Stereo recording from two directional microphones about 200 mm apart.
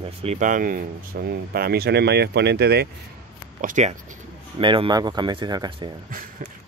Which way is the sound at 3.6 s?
40° right (ahead or behind).